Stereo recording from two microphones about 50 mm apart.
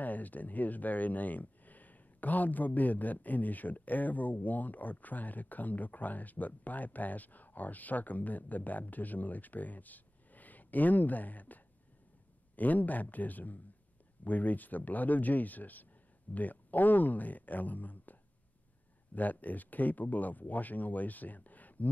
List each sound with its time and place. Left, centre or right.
0.0 s speech: left
19.1 s speech: left